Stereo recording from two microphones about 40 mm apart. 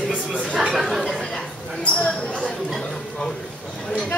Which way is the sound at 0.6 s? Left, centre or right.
Centre.